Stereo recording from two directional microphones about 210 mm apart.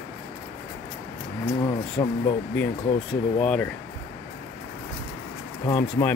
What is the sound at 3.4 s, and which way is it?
Speech, 5° left (ahead or behind).